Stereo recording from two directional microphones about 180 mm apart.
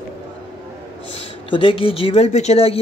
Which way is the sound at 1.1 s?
30° left (ahead or behind).